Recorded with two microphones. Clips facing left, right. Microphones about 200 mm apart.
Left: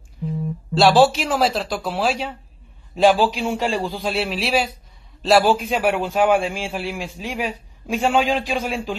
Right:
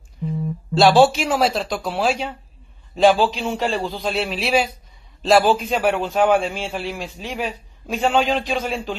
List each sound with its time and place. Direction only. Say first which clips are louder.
0.7 s a man's voice: right 1 dB; centre (ahead or behind)